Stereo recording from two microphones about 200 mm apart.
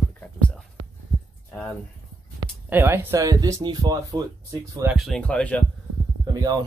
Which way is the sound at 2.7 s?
10° right (ahead or behind).